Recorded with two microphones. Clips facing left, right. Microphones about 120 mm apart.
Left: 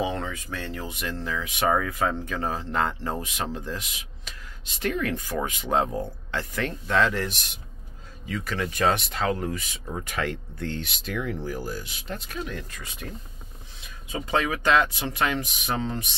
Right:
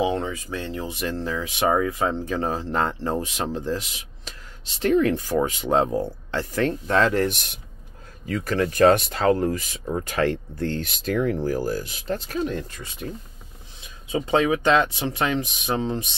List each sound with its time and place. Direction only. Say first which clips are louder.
0.0 s speech: right 5 dB; 15° right (ahead or behind)
14.1 s speech: right 6 dB; 25° right (ahead or behind)